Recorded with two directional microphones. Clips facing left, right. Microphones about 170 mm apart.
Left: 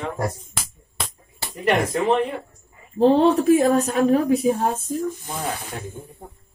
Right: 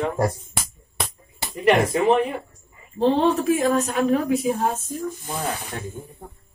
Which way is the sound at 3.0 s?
35° left (ahead or behind).